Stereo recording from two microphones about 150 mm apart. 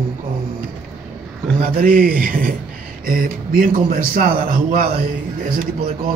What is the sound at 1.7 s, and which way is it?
A man's voice, 70° right (ahead or behind).